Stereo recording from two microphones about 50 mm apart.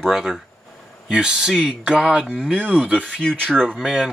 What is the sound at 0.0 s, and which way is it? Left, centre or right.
Speech, centre.